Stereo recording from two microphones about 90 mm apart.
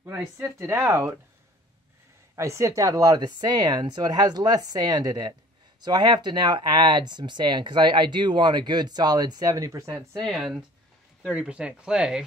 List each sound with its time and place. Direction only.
0.0 s speech: 25° right (ahead or behind)
2.3 s speech: 35° right (ahead or behind)
10.2 s speech: 5° right (ahead or behind)